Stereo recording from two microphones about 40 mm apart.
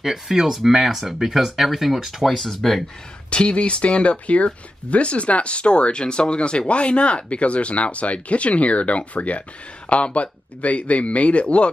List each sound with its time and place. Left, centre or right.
0.0 s speech: centre
2.2 s speech: centre
3.3 s speech: left